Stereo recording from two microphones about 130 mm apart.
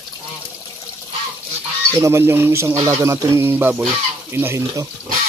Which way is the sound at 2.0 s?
20° right (ahead or behind).